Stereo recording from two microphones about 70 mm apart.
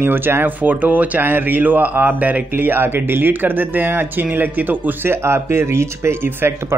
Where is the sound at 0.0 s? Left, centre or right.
Right.